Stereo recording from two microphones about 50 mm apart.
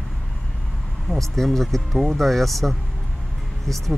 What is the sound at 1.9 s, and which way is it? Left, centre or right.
Speech, centre.